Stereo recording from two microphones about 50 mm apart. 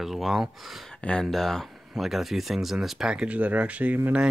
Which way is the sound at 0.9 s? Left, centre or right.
Left.